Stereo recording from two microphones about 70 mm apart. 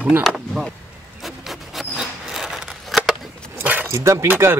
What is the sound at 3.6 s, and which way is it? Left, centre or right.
Keys jangling, right.